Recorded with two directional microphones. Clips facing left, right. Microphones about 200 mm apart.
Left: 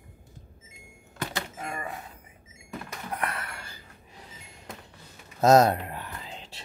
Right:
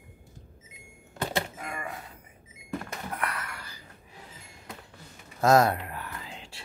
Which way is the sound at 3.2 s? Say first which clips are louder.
Left 1 dB; 25° left (ahead or behind).